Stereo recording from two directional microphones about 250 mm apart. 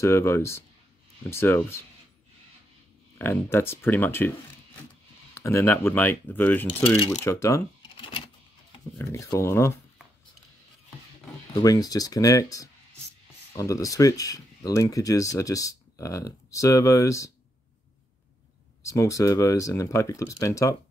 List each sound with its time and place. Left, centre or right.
0.0 s speech: centre
3.2 s speech: centre
5.3 s speech: centre
6.7 s speech: centre
11.5 s speech: centre
18.9 s speech: centre